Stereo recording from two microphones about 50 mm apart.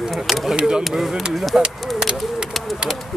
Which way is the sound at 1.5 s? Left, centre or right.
Centre.